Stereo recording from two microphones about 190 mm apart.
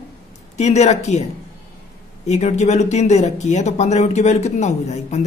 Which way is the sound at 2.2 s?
35° left (ahead or behind).